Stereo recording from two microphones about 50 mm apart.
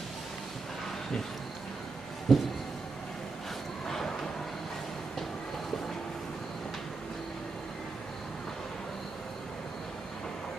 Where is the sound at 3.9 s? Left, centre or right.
Centre.